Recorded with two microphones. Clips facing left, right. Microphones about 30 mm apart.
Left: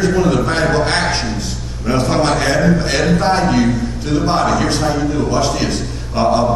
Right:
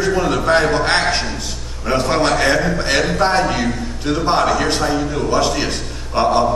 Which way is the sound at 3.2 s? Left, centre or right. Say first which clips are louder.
Left 2 dB; centre.